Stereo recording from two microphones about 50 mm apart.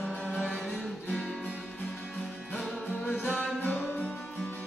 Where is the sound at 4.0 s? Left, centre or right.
Left.